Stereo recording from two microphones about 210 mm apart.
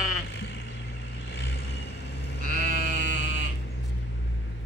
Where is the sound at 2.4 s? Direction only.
40° right (ahead or behind).